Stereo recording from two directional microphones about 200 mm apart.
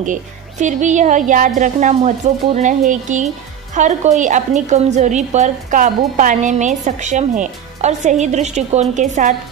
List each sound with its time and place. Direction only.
0.0 s a woman's voice: 40° right (ahead or behind)